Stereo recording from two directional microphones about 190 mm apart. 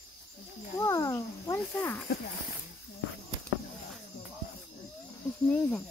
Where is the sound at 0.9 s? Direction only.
15° left (ahead or behind).